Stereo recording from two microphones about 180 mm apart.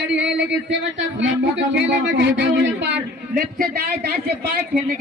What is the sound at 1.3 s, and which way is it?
Speech, 80° right.